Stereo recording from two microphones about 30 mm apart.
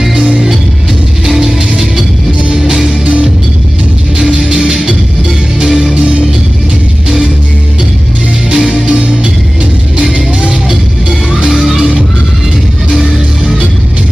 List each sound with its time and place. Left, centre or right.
2.6 s music: right
5.6 s music: centre
8.6 s music: right
11.5 s music: centre